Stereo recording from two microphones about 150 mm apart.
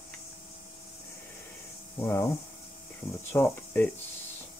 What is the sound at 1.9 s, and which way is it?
Cricket, 15° left (ahead or behind).